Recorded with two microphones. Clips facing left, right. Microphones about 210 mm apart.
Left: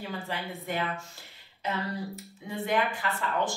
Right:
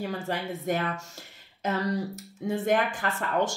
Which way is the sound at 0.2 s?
45° right (ahead or behind).